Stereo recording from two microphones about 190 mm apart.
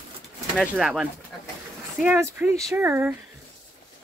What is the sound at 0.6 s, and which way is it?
Speech, 5° right (ahead or behind).